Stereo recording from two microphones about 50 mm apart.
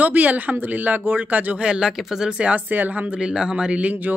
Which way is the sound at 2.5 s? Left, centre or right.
Right.